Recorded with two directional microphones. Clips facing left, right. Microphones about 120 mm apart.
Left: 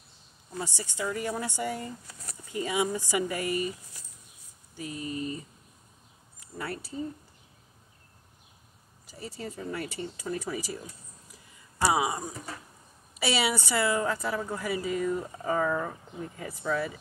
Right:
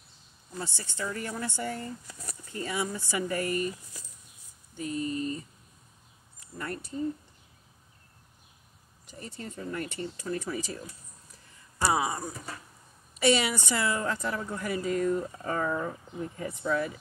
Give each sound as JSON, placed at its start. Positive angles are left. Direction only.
{"t": 0.6, "sound": "speech", "side_deg": 15}
{"t": 4.9, "sound": "speech", "side_deg": -40}
{"t": 6.6, "sound": "speech", "side_deg": 5}
{"t": 9.0, "sound": "speech", "side_deg": 10}
{"t": 11.9, "sound": "speech", "side_deg": 10}